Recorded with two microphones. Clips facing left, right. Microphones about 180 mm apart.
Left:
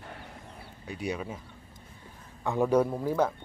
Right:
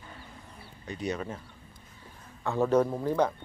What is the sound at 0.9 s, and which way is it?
Speech, 10° left (ahead or behind).